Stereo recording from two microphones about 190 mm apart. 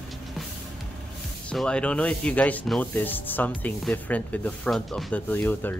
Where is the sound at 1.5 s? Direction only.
5° left (ahead or behind).